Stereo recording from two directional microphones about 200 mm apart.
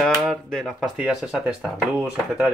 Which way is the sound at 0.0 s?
Centre (ahead or behind).